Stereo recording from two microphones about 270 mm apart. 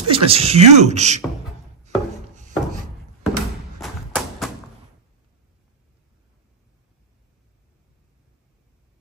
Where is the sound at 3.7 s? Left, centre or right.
Centre.